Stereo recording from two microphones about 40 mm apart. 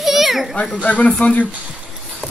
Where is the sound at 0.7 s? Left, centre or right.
Left.